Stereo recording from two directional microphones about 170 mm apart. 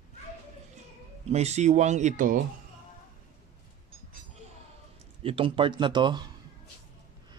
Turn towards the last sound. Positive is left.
turn(degrees=-25)  # may be behind; listen again after turning